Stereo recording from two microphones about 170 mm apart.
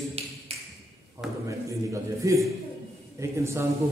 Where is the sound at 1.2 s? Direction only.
Centre (ahead or behind).